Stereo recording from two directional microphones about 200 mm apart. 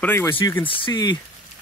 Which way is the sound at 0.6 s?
25° left (ahead or behind).